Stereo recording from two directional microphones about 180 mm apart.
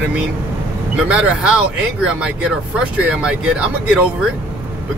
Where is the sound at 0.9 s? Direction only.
5° right (ahead or behind).